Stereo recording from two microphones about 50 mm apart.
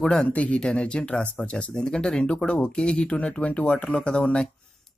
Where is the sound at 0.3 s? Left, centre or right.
Left.